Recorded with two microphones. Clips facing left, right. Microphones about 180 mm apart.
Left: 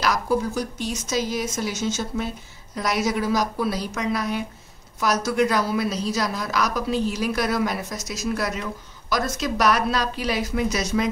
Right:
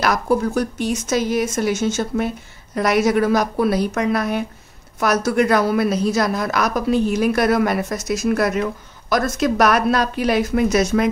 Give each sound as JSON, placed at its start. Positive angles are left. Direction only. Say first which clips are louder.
{"t": 0.0, "sound": "a woman's voice", "louder": "right 4 dB", "side_deg": -55}